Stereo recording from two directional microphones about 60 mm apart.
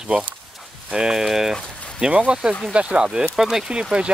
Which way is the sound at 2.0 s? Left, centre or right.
Centre.